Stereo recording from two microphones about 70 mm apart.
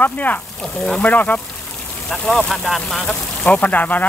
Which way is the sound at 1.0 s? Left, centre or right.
Left.